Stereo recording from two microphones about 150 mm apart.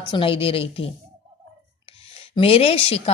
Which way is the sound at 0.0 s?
35° left (ahead or behind).